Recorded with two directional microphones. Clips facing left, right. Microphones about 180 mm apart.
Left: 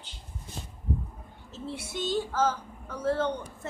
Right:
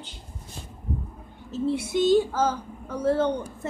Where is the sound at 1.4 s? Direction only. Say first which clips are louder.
Right 12 dB; 15° right (ahead or behind).